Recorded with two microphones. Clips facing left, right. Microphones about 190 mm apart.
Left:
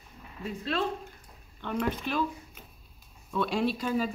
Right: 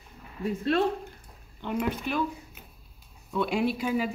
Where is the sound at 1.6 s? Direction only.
10° right (ahead or behind).